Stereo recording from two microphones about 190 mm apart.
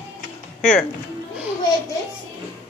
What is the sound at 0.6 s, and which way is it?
Speech, 5° left (ahead or behind).